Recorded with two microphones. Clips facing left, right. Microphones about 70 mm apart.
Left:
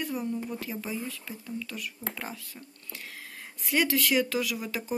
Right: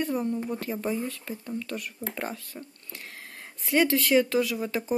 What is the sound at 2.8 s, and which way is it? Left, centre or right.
Speech, right.